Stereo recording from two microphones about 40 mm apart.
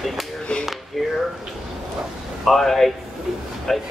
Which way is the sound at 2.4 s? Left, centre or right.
Centre.